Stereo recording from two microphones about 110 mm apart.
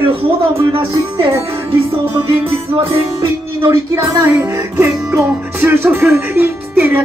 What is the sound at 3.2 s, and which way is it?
Music, 25° right (ahead or behind).